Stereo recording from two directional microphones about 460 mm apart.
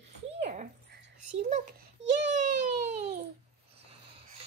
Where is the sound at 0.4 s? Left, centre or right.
Centre.